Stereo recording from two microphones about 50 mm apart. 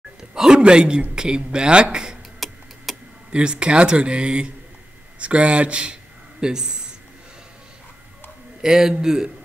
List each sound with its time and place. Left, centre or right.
0.2 s speech: centre
2.4 s a sound: centre
3.3 s speech: centre
8.5 s speech: centre